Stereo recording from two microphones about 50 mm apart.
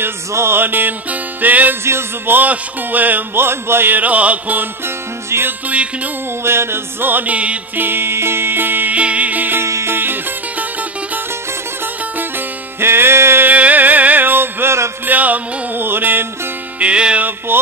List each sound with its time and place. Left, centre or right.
0.3 s music: right
1.9 s music: right
2.3 s music: right
3.3 s music: right
3.9 s music: right
4.8 s music: right
8.9 s music: right
9.6 s music: right
12.8 s music: right
13.5 s music: right
15.0 s music: right
15.8 s music: right
16.8 s music: right
17.5 s speech: right